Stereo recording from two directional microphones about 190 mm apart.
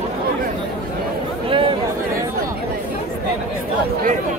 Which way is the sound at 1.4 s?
25° right (ahead or behind).